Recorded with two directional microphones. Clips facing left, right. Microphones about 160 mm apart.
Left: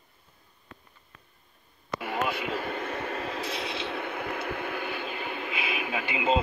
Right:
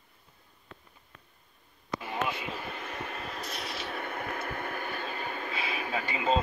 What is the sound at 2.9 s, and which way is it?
Vehicle, 35° left (ahead or behind).